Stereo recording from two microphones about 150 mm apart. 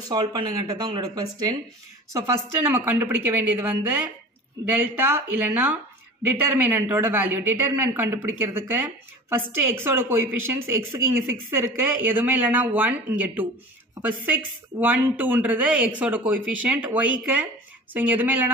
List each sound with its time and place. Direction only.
0.0 s speech: 25° right (ahead or behind)
2.1 s a woman's voice: 15° right (ahead or behind)